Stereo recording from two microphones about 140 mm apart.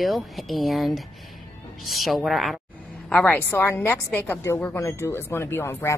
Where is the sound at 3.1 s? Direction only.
15° left (ahead or behind).